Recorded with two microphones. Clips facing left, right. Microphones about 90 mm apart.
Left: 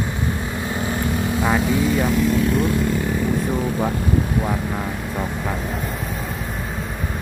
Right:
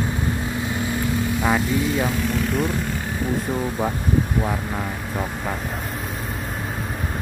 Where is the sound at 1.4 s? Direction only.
Centre (ahead or behind).